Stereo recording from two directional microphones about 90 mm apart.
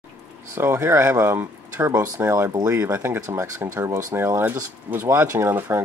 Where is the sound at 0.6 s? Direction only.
25° right (ahead or behind).